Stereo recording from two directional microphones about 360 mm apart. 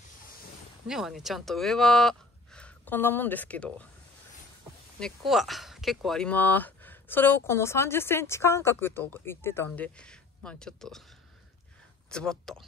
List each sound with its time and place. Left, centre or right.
0.8 s speech: centre
4.9 s speech: centre
12.1 s speech: centre